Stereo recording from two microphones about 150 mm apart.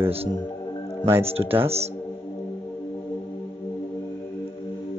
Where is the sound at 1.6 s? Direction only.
40° right (ahead or behind).